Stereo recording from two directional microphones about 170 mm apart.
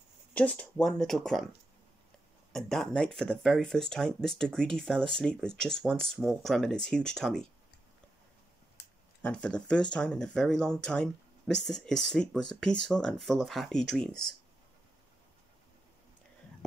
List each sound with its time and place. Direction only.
0.3 s speech: 5° left (ahead or behind)
2.5 s speech: centre (ahead or behind)
8.8 s a sound: 80° left
9.2 s speech: 5° left (ahead or behind)